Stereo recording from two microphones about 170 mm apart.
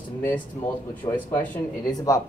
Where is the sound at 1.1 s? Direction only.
10° left (ahead or behind).